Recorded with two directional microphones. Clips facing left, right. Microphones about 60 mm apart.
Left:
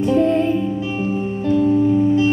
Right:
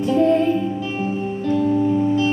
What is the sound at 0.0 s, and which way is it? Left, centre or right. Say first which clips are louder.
Music: even; left.